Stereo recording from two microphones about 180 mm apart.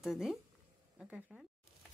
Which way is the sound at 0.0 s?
Centre (ahead or behind).